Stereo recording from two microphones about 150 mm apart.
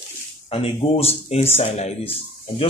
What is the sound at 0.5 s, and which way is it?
Speech, 40° left (ahead or behind).